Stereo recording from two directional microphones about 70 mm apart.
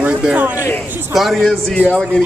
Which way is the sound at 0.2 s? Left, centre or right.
Right.